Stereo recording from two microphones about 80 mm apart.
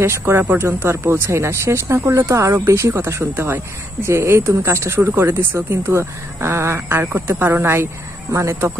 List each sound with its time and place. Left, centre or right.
0.0 s speech: right